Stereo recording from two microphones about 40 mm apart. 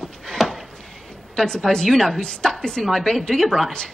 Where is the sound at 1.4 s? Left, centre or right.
Left.